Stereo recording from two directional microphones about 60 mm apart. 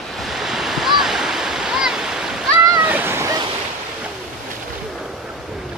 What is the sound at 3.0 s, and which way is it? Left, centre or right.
Waves, right.